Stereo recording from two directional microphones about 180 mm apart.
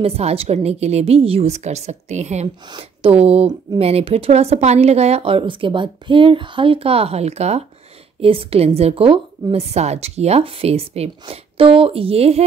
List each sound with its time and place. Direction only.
0.0 s a woman's voice: 35° right (ahead or behind)